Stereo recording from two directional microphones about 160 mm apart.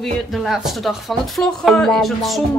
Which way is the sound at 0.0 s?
Centre (ahead or behind).